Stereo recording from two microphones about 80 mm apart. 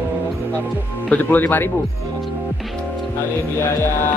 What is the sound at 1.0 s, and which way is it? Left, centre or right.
Speech, left.